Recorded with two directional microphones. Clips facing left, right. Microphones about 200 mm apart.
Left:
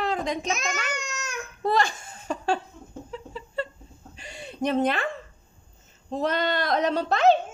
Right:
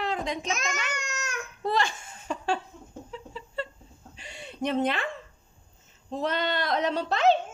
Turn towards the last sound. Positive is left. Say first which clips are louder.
# left 3 dB
turn(degrees=45)  # may be behind; listen again after turning